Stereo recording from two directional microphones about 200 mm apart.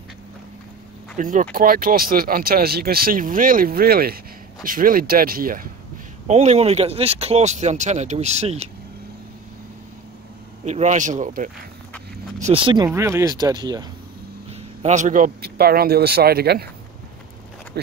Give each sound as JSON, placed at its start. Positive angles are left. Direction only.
{"t": 1.1, "sound": "speech", "side_deg": -40}
{"t": 6.2, "sound": "speech", "side_deg": -35}
{"t": 10.6, "sound": "speech", "side_deg": -35}
{"t": 12.4, "sound": "speech", "side_deg": -30}
{"t": 14.8, "sound": "speech", "side_deg": -35}